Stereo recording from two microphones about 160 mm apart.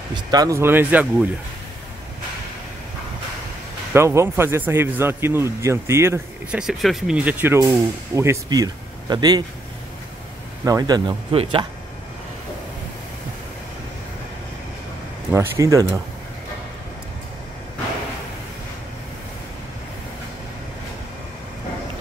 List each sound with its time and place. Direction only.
0.1 s a man's voice: 25° right (ahead or behind)
3.9 s a man's voice: 15° right (ahead or behind)
6.6 s a man's voice: centre (ahead or behind); by 9.4 s 25° right (ahead or behind)
10.6 s speech: 20° right (ahead or behind)
15.3 s speech: 20° right (ahead or behind)